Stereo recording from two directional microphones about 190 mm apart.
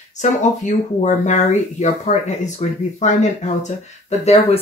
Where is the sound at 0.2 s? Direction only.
40° left (ahead or behind).